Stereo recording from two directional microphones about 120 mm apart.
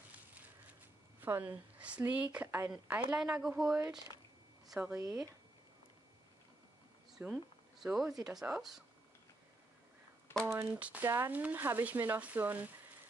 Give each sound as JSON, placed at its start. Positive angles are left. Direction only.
{"t": 1.2, "sound": "speech", "side_deg": -15}
{"t": 4.9, "sound": "speech", "side_deg": -25}
{"t": 7.2, "sound": "speech", "side_deg": -15}
{"t": 7.8, "sound": "speech", "side_deg": -5}
{"t": 10.4, "sound": "speech", "side_deg": -20}